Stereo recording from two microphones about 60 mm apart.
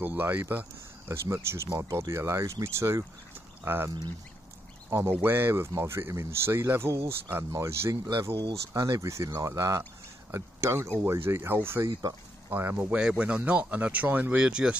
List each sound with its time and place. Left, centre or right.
0.0 s speech: right
4.8 s duck: right
5.2 s speech: right
7.5 s speech: right
14.4 s speech: centre